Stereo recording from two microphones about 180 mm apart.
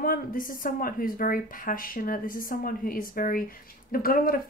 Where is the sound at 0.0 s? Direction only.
50° left (ahead or behind).